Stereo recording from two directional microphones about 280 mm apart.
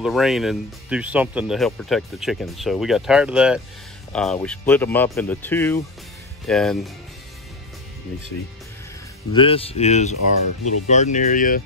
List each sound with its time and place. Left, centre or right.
0.0 s speech: centre
9.3 s speech: centre